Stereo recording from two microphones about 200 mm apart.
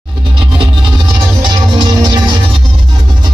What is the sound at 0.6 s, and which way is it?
Music, 25° right (ahead or behind).